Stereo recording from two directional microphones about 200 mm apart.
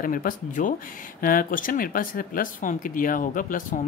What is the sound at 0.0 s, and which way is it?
Speech, 45° left (ahead or behind).